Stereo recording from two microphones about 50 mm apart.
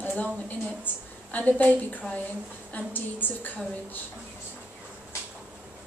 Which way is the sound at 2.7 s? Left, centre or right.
Left.